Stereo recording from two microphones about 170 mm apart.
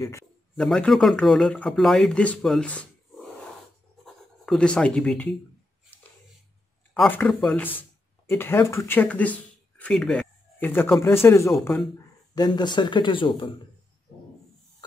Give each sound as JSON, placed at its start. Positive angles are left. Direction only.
{"t": 0.6, "sound": "speech", "side_deg": 5}
{"t": 4.0, "sound": "scratch", "side_deg": 5}
{"t": 6.9, "sound": "speech", "side_deg": 10}